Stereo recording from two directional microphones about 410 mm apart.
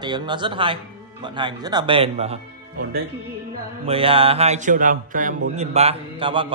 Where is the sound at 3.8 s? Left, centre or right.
Centre.